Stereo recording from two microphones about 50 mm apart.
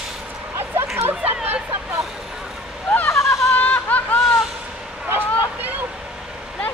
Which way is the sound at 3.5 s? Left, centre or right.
Left.